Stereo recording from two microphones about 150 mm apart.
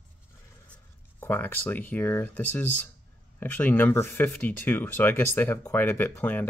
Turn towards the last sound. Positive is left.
turn(degrees=15)  # may be behind; listen again after turning